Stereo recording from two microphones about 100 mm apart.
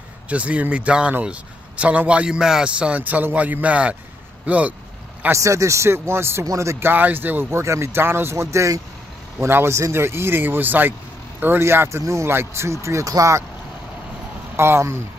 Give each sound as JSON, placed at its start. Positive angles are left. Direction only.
{"t": 0.3, "sound": "a man's voice", "side_deg": -15}
{"t": 5.2, "sound": "speech", "side_deg": -30}
{"t": 14.6, "sound": "speech", "side_deg": -25}